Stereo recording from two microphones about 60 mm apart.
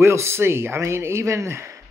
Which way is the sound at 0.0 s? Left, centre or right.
Right.